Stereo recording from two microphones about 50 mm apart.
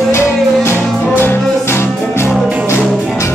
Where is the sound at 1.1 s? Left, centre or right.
Left.